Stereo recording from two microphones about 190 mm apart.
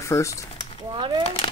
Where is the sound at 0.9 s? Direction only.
25° right (ahead or behind).